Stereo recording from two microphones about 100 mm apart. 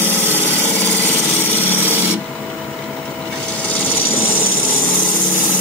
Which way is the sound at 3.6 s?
15° left (ahead or behind).